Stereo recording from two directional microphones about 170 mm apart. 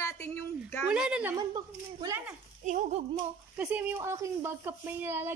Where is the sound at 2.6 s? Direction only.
45° right (ahead or behind).